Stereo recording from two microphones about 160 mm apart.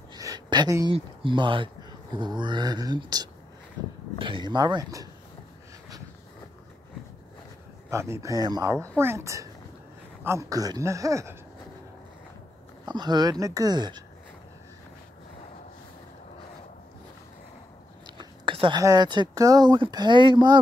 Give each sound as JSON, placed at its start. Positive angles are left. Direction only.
{"t": 0.1, "sound": "a sound", "side_deg": -25}
{"t": 0.9, "sound": "speech", "side_deg": -30}
{"t": 7.9, "sound": "speech", "side_deg": -15}
{"t": 12.8, "sound": "speech", "side_deg": -25}
{"t": 18.0, "sound": "speech", "side_deg": -30}